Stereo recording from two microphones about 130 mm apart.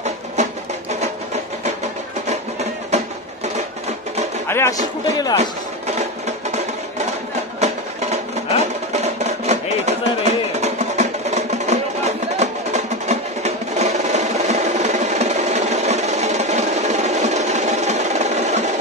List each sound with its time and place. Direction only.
0.4 s music: 60° right (ahead or behind)
2.9 s music: 60° right (ahead or behind)
4.5 s speech: 20° left (ahead or behind)
5.4 s music: 60° right (ahead or behind)
7.6 s music: 60° right (ahead or behind)